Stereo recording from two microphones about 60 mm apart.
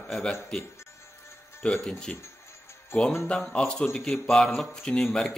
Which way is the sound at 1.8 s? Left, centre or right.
Centre.